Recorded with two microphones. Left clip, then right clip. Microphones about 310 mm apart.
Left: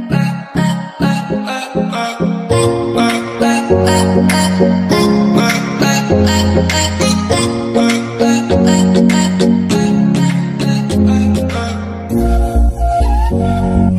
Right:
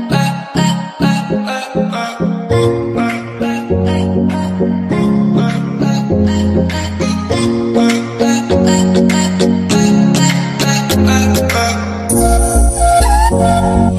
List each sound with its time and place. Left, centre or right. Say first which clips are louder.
0.1 s music: right 3 dB; centre; by 6.6 s left
7.0 s music: left 2 dB; centre; by 11.4 s right
13.4 s music: right 5 dB; right